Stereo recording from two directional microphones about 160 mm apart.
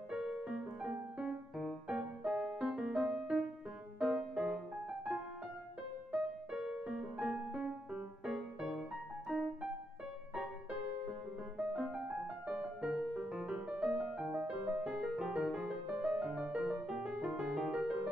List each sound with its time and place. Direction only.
0.1 s music: 5° right (ahead or behind)
6.1 s music: 5° right (ahead or behind)